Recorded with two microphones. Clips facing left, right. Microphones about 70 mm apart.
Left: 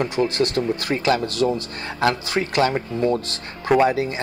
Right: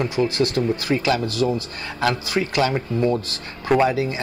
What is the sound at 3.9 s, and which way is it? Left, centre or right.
Speech, left.